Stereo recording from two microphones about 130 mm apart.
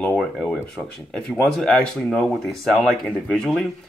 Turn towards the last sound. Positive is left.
turn(degrees=5)  # may be behind; listen again after turning